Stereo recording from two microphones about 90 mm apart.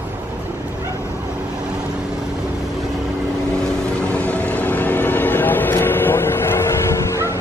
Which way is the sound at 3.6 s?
10° left (ahead or behind).